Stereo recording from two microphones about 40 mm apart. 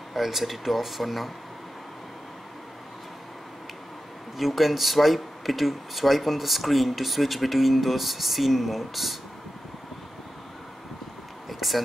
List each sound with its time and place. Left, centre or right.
0.1 s speech: centre
4.4 s speech: centre
11.4 s vehicle: centre